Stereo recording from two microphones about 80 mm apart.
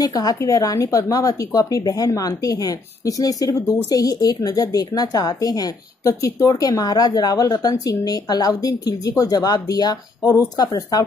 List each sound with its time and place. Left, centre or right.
0.0 s a woman's voice: left